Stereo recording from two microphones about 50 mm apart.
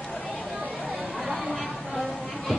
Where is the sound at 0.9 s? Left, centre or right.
Right.